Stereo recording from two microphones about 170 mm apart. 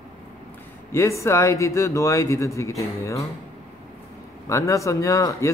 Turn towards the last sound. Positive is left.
turn(degrees=20)  # may be behind; listen again after turning